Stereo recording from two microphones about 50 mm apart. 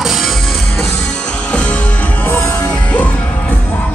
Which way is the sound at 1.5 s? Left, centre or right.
Left.